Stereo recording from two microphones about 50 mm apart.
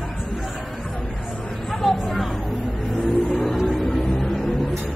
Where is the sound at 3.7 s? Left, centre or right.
Centre.